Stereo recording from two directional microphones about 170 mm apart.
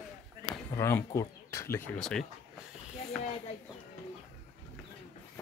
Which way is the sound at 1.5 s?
15° left (ahead or behind).